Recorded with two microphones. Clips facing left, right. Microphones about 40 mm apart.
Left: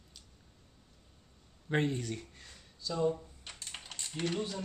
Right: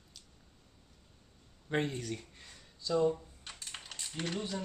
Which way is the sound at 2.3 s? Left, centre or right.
Centre.